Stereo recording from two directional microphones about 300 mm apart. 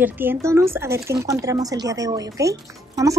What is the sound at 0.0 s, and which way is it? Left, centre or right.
Speech, centre.